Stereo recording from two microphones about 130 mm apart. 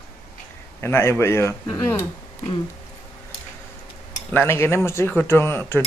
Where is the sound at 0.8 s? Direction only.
20° left (ahead or behind).